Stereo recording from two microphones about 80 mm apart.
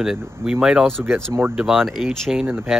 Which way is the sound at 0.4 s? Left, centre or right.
Centre.